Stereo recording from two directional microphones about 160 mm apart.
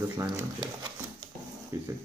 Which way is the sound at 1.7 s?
15° right (ahead or behind).